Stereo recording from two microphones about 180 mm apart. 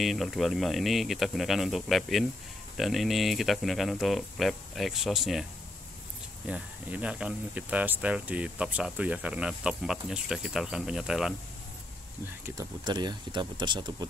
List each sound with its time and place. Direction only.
0.0 s speech: centre (ahead or behind)
12.4 s speech: 20° right (ahead or behind)